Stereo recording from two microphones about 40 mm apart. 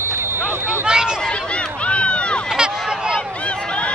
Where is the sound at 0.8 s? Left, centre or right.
Centre.